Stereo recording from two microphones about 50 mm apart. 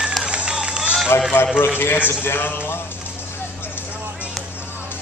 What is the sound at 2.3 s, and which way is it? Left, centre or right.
Speech, left.